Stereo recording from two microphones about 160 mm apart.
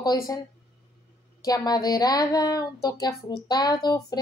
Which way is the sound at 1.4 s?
25° left (ahead or behind).